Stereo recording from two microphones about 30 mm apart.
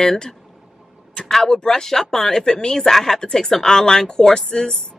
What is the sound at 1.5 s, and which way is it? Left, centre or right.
Speech, left.